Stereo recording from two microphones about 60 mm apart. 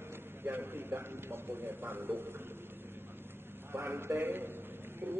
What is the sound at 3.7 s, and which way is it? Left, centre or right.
Speech, right.